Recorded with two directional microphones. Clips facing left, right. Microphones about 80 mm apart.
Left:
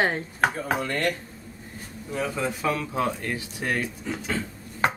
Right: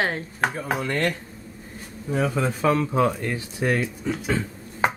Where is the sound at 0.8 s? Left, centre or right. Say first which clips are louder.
Right 4 dB; centre.